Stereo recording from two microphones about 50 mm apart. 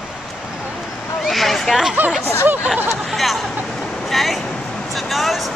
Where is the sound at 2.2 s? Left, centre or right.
Left.